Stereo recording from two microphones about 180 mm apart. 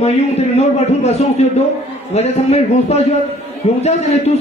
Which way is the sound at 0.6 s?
35° left (ahead or behind).